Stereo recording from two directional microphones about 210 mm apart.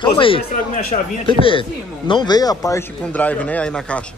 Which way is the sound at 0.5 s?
40° left (ahead or behind).